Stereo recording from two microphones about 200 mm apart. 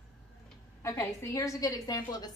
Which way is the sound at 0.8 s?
15° left (ahead or behind).